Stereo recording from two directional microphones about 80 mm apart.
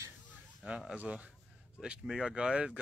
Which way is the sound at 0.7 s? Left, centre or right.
Centre.